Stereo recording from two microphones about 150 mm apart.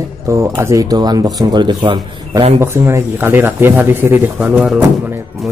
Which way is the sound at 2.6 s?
20° right (ahead or behind).